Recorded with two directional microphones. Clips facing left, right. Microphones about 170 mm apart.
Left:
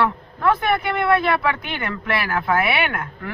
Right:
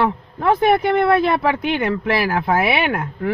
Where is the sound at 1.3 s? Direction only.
35° right (ahead or behind).